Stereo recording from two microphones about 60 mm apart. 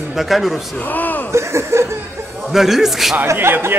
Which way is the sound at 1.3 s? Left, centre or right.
Right.